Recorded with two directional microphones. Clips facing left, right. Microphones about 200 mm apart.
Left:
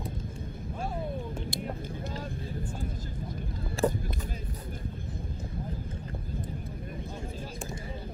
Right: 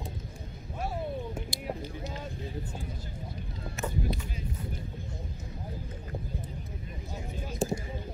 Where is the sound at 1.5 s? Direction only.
55° left (ahead or behind).